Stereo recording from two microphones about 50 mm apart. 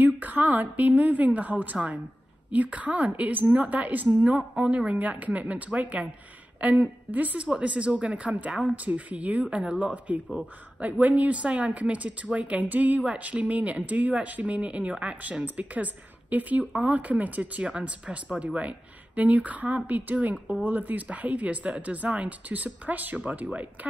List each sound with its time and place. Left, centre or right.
0.0 s speech: right